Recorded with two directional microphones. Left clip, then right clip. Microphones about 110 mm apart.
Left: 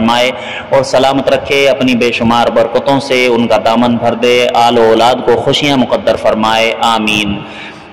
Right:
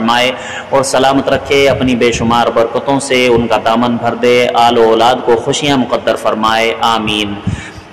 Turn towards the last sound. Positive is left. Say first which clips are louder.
# left 2 dB
turn(degrees=25)  # may be behind; listen again after turning